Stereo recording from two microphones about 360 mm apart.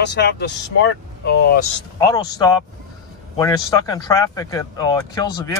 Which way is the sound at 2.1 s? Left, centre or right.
Centre.